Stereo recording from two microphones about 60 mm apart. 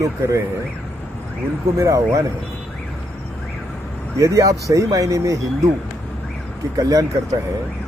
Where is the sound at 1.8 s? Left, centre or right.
Right.